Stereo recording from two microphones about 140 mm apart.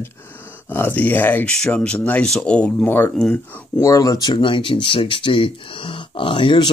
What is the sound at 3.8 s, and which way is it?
Speech, 25° left (ahead or behind).